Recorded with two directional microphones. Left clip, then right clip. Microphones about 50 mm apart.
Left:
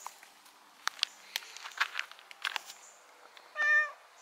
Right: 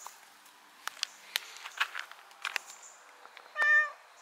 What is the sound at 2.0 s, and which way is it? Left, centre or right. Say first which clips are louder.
Walk: left 1 dB; centre.